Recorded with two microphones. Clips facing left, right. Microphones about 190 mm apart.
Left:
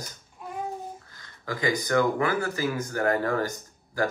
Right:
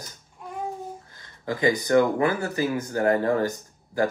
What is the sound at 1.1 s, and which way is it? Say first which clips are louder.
Speech: right 5 dB; 25° right (ahead or behind).